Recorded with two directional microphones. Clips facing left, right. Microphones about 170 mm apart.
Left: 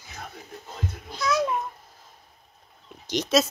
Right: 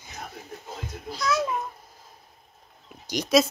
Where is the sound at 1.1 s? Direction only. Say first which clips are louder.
Left 1 dB; centre (ahead or behind).